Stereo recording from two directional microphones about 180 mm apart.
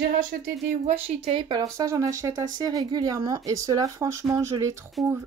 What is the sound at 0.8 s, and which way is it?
Speech, 35° right (ahead or behind).